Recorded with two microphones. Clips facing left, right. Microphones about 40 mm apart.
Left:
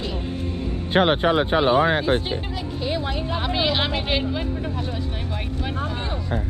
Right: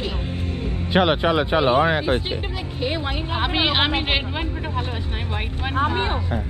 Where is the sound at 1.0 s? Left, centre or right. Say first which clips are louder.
Left 1 dB; right.